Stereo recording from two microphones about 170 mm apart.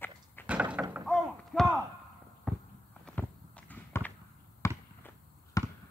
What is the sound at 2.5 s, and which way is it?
Walk, 5° left (ahead or behind).